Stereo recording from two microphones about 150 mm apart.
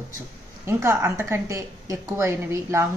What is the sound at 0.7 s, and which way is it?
A woman's voice, 15° right (ahead or behind).